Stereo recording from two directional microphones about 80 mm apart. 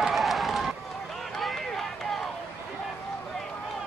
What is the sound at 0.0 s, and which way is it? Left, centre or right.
Run, centre.